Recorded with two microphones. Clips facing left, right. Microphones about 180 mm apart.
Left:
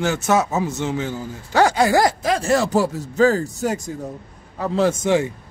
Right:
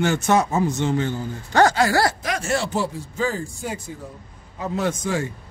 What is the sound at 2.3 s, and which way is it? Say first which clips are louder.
Speech: left 6 dB; 40° left (ahead or behind).